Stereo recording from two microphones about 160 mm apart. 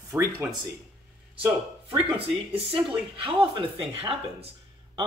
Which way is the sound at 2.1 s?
35° right (ahead or behind).